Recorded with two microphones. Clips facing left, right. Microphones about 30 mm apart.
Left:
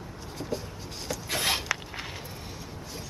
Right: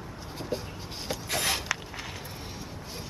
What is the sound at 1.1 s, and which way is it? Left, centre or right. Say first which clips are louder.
Rub: even; right.